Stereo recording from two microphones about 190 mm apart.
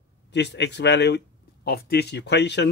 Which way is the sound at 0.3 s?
65° left (ahead or behind).